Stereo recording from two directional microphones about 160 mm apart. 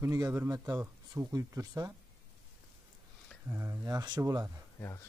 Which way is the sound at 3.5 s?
20° right (ahead or behind).